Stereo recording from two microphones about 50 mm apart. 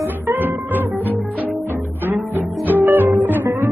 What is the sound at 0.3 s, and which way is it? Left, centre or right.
Music, right.